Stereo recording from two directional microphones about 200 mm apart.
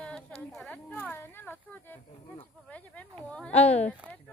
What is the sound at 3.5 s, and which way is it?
Speech, 30° left (ahead or behind).